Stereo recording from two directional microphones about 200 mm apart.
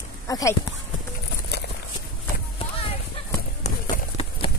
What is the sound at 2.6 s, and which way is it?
Clip-clop, 30° left (ahead or behind).